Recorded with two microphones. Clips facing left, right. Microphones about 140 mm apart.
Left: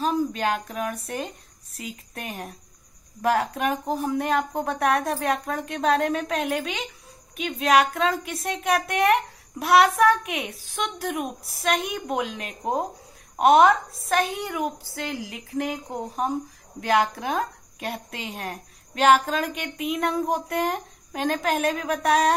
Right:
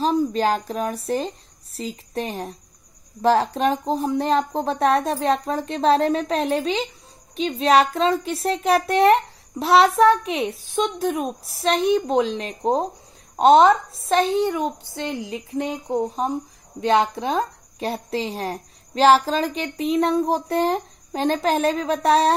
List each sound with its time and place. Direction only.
0.0 s a woman's voice: 30° right (ahead or behind)